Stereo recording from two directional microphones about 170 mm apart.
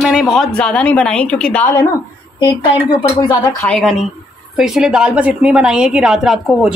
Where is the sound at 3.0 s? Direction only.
25° left (ahead or behind).